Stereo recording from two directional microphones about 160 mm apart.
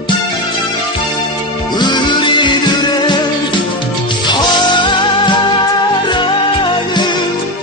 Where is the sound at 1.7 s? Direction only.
30° left (ahead or behind).